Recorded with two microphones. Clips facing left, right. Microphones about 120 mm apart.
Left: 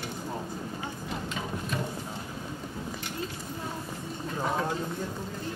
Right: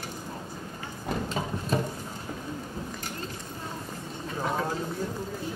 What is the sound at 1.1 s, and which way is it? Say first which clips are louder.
Music: right 6 dB; 35° right (ahead or behind).